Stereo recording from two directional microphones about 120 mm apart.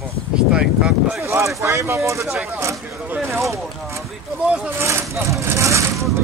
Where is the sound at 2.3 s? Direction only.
10° right (ahead or behind).